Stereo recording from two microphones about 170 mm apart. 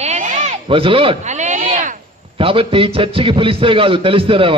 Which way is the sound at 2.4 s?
35° right (ahead or behind).